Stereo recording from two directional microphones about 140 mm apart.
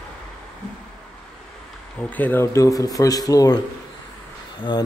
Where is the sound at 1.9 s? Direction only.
10° left (ahead or behind).